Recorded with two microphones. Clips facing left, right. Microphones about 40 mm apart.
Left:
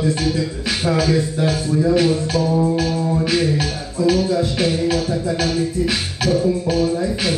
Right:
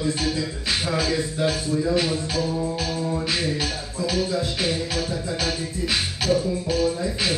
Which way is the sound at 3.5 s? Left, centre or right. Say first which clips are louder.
Left 5 dB; centre.